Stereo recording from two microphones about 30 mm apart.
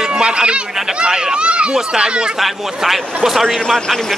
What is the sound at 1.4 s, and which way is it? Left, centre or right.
Speech, right.